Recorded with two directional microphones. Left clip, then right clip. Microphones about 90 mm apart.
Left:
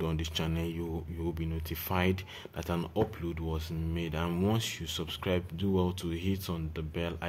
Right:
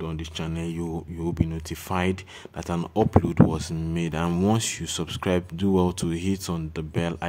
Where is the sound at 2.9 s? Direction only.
80° right.